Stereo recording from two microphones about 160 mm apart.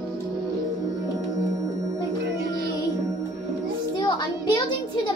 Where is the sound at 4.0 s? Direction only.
30° left (ahead or behind).